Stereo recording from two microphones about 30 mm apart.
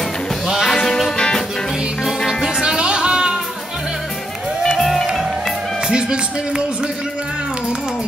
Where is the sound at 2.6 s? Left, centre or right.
Right.